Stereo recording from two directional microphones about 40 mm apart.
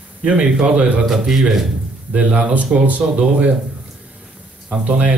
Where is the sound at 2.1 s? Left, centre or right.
Right.